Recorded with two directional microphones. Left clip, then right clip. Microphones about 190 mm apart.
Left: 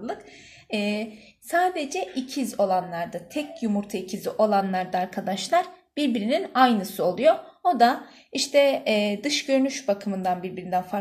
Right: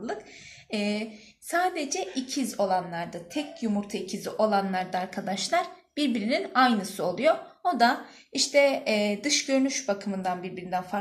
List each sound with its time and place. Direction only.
0.7 s a woman's voice: 35° left (ahead or behind)